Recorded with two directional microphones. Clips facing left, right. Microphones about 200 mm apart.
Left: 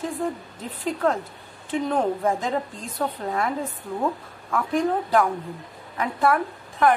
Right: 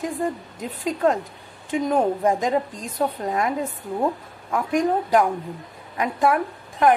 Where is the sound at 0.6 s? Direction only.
15° right (ahead or behind).